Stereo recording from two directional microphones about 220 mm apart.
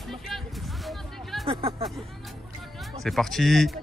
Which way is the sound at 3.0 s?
Centre (ahead or behind).